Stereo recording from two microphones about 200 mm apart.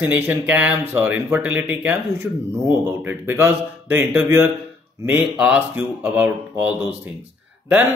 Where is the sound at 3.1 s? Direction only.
10° right (ahead or behind).